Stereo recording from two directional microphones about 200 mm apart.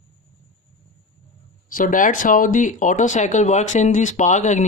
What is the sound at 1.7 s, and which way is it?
Speech, 40° left (ahead or behind).